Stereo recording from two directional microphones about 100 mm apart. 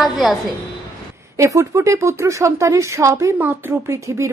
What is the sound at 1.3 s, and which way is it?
A woman's voice, 30° right (ahead or behind).